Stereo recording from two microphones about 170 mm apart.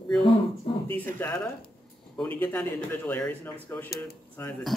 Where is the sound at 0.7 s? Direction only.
30° left (ahead or behind).